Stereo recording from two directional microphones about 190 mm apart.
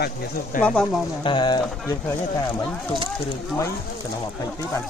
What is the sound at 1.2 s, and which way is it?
Speech, 25° left (ahead or behind).